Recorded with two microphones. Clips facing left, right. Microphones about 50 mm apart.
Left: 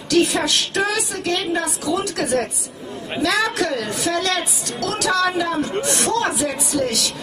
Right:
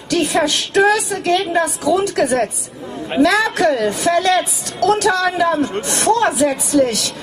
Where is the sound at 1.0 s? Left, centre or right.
Centre.